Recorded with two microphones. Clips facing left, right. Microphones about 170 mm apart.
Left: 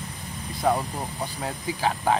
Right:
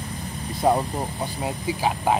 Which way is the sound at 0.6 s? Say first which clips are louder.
Right 3 dB; 20° right (ahead or behind).